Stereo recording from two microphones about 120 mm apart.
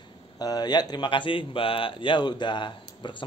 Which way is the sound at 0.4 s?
35° left (ahead or behind).